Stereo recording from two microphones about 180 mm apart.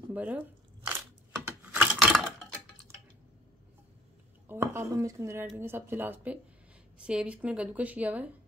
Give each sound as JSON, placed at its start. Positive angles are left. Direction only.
{"t": 0.1, "sound": "a sound", "side_deg": -10}
{"t": 1.6, "sound": "typing", "side_deg": -5}
{"t": 4.5, "sound": "a woman's voice", "side_deg": -15}